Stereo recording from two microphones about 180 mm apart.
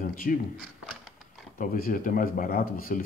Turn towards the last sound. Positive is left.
turn(degrees=55)  # may be behind; listen again after turning